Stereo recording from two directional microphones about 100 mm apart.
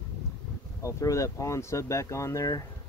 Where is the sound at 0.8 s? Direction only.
30° left (ahead or behind).